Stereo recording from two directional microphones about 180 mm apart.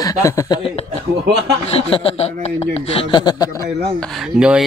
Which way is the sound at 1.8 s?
35° left (ahead or behind).